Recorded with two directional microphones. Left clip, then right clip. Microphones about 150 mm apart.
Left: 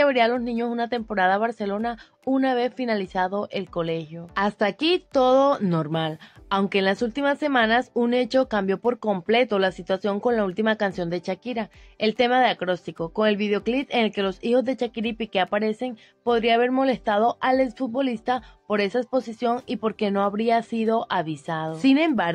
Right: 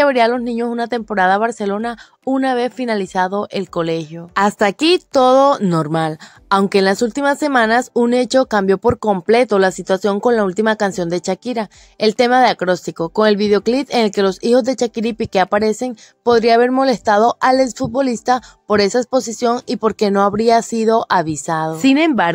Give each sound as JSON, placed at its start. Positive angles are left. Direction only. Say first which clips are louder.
{"t": 0.0, "sound": "a woman's voice", "louder": "right 6 dB", "side_deg": -40}
{"t": 21.8, "sound": "a woman's voice", "louder": "right 6 dB", "side_deg": -35}